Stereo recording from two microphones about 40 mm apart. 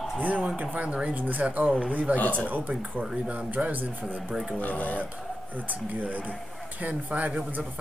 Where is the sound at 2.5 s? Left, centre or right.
Right.